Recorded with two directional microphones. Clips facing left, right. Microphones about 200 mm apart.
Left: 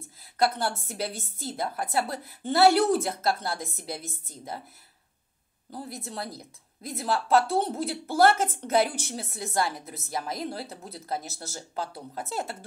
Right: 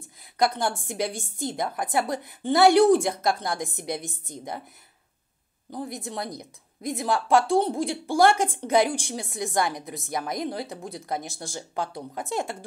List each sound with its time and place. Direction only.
0.2 s a woman's voice: 15° right (ahead or behind)
5.7 s a woman's voice: 15° right (ahead or behind)